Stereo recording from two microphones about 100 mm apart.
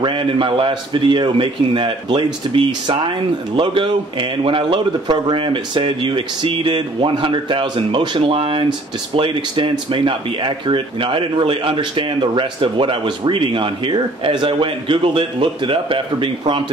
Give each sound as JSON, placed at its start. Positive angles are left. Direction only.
{"t": 0.0, "sound": "speech", "side_deg": -60}
{"t": 8.4, "sound": "speech", "side_deg": -65}